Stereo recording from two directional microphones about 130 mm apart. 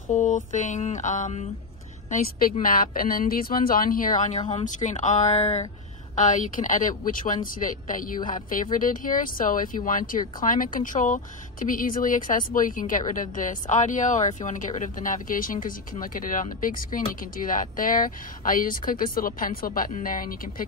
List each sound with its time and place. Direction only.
0.1 s a woman's voice: 75° left (ahead or behind)
4.6 s speech: 70° left (ahead or behind)
6.1 s a woman's voice: 85° left